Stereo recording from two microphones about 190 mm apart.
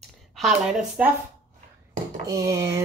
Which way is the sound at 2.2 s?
15° right (ahead or behind).